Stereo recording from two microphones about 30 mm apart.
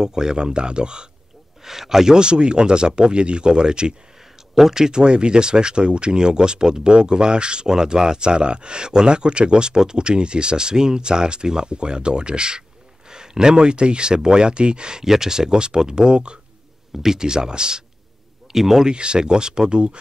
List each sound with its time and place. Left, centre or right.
0.0 s speech: right
1.6 s speech: centre
2.1 s speech: right
15.0 s speech: centre
17.0 s speech: right
18.5 s speech: centre
18.9 s speech: right